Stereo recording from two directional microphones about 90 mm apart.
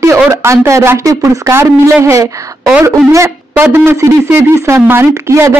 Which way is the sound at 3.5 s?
20° right (ahead or behind).